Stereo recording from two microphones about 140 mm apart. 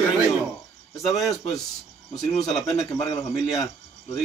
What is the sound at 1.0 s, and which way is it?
Speech, centre (ahead or behind).